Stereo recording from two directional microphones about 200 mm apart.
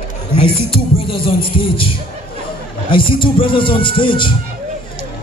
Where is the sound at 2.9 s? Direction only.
25° left (ahead or behind).